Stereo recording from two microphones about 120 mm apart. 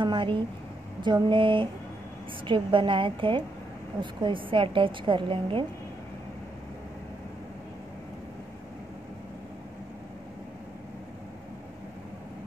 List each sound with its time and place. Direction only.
0.0 s a woman's voice: 40° right (ahead or behind)